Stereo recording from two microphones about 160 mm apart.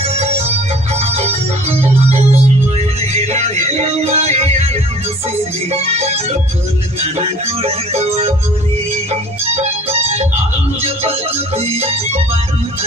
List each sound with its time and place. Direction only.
0.0 s music: 40° right (ahead or behind)
0.9 s organ: 40° right (ahead or behind)
3.2 s music: 45° right (ahead or behind)
5.7 s music: 40° right (ahead or behind)